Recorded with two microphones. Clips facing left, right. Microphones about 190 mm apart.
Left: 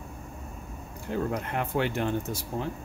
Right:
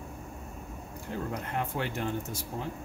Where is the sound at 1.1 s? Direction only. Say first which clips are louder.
Left 4 dB; 70° left (ahead or behind).